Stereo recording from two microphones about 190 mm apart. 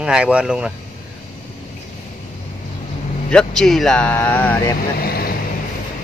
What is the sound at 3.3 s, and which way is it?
Speech, 5° left (ahead or behind).